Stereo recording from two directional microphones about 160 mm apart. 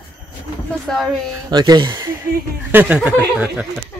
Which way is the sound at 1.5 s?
25° right (ahead or behind).